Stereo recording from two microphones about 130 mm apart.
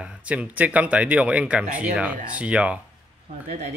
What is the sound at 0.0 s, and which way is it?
Speech, 10° right (ahead or behind).